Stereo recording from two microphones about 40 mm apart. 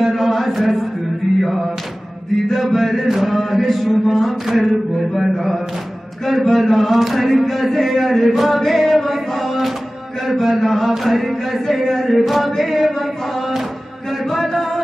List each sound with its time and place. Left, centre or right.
0.0 s a sound: centre
1.4 s chant: centre
2.4 s mantra: centre
3.7 s chant: centre